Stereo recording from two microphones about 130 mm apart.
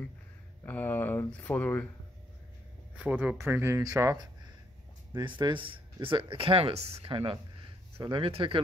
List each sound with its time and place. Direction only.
0.7 s speech: 15° left (ahead or behind)
3.0 s speech: 10° right (ahead or behind); by 4.3 s 25° right (ahead or behind)
5.1 s speech: 35° right (ahead or behind)